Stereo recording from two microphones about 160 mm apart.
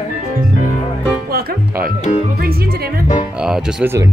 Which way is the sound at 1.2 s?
75° right (ahead or behind).